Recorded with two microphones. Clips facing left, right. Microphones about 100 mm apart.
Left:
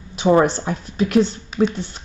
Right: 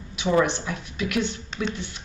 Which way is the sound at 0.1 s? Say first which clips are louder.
Left 6 dB; 40° left (ahead or behind).